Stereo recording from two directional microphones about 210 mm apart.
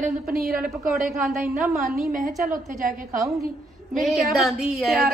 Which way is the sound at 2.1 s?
40° right (ahead or behind).